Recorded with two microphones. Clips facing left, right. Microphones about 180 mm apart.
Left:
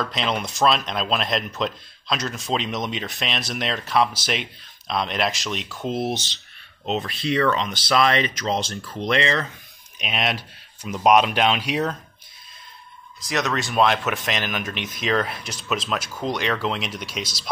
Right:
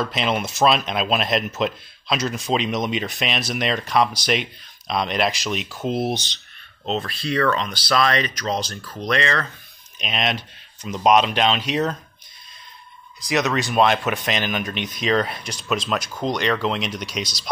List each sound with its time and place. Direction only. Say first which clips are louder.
0.0 s speech: right 2 dB; 5° right (ahead or behind)
6.9 s speech: even; 20° left (ahead or behind)
9.9 s speech: right 1 dB; 5° left (ahead or behind)
13.2 s speech: right 3 dB; centre (ahead or behind)